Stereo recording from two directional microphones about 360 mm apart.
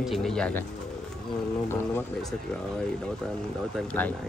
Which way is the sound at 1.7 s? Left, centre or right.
Centre.